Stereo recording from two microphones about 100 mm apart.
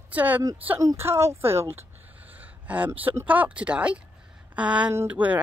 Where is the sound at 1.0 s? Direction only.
25° right (ahead or behind).